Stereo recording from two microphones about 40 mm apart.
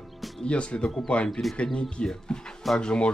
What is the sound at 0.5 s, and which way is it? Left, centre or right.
Speech, left.